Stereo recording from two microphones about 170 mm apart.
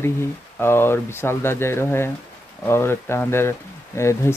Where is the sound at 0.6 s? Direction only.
15° left (ahead or behind).